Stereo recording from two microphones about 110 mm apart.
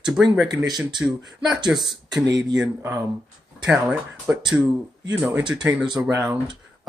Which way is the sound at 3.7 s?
10° right (ahead or behind).